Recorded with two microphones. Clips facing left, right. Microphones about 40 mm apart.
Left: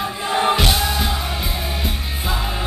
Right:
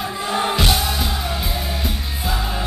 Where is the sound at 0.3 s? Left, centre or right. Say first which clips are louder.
Left 2 dB; centre.